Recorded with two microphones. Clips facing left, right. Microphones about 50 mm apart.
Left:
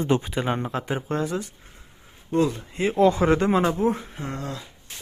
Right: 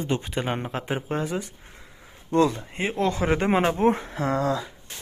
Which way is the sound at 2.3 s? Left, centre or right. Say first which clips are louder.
Right 2 dB; right.